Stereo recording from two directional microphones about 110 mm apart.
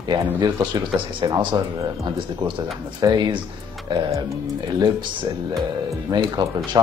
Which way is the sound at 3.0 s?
40° right (ahead or behind).